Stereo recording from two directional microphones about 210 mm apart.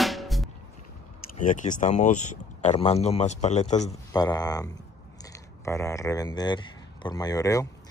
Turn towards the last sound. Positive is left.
turn(degrees=15)  # may be behind; listen again after turning